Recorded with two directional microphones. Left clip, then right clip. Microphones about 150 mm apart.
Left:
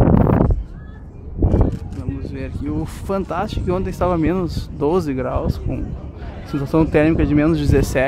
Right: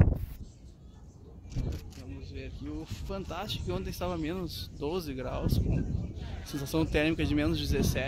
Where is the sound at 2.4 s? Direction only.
45° left (ahead or behind).